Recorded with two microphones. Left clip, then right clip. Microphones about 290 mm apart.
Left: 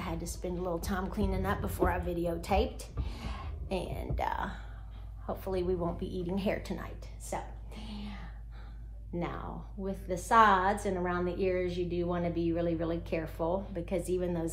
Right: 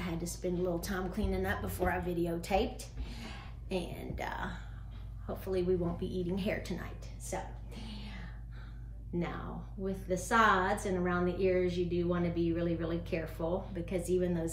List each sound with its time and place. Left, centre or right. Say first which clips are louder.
0.0 s a woman's voice: even; centre
9.8 s a woman's voice: left 3 dB; centre